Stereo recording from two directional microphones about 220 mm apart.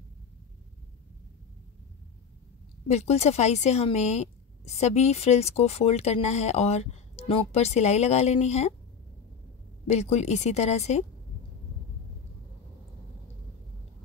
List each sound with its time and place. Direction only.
2.9 s speech: 30° left (ahead or behind)
9.8 s speech: 30° left (ahead or behind)